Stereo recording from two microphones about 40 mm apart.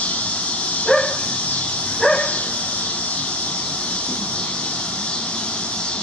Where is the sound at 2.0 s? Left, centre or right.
Centre.